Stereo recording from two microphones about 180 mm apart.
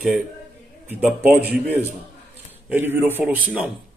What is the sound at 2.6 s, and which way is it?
A man's voice, 10° right (ahead or behind).